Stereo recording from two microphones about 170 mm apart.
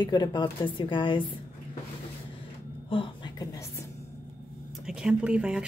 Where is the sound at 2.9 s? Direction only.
30° left (ahead or behind).